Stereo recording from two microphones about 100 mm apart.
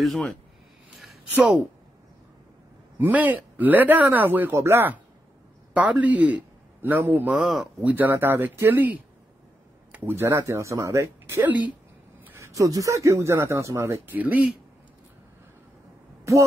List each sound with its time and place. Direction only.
0.0 s speech: 5° left (ahead or behind)
1.3 s speech: 15° right (ahead or behind)
3.0 s a man's voice: 15° right (ahead or behind)
7.4 s speech: 5° right (ahead or behind)
7.8 s speech: 20° right (ahead or behind)
14.1 s speech: 15° right (ahead or behind)